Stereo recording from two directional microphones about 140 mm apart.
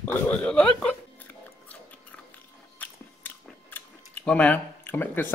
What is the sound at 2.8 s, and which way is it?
Chewing, 15° left (ahead or behind).